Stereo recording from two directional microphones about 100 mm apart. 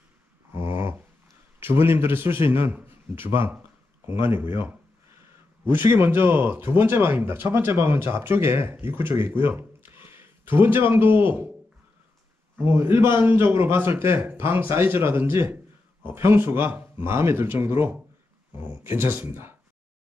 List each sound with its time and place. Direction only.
0.5 s dog: 25° right (ahead or behind)
1.6 s a man's voice: 20° right (ahead or behind)
12.5 s a man's voice: 25° right (ahead or behind)